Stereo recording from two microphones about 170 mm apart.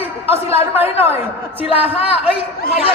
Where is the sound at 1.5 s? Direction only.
35° left (ahead or behind).